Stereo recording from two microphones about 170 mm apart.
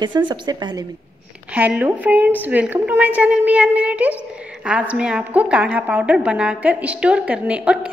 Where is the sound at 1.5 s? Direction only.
10° right (ahead or behind).